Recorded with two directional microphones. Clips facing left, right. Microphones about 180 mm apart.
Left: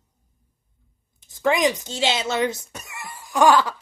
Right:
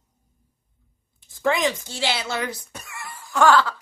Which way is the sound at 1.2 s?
20° left (ahead or behind).